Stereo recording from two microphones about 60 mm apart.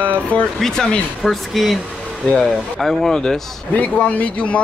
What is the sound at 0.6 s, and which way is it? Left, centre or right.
Speech, centre.